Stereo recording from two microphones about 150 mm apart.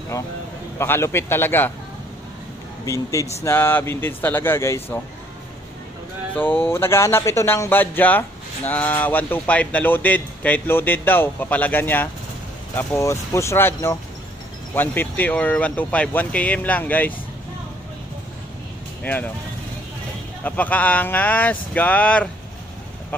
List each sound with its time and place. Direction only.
0.7 s speech: 15° left (ahead or behind)
2.8 s speech: 20° left (ahead or behind)
6.3 s speech: 15° left (ahead or behind)
19.0 s speech: 10° left (ahead or behind)
20.4 s speech: 10° left (ahead or behind)